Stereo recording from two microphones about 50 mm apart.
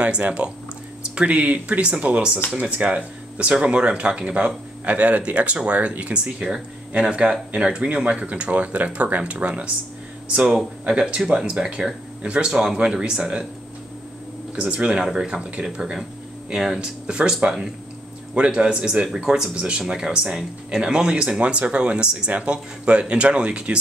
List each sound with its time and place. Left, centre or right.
0.4 s speech: right
14.5 s speech: right
16.5 s speech: centre
16.8 s speech: centre
19.2 s speech: centre
19.5 s speech: centre